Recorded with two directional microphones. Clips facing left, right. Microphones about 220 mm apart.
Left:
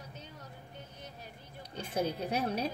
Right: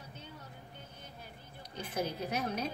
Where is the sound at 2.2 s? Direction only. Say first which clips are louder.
Left 3 dB; 30° left (ahead or behind).